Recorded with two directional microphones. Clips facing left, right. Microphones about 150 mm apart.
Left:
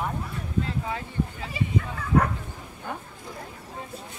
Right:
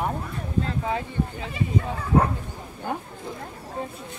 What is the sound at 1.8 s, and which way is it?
Bow-wow, 30° right (ahead or behind).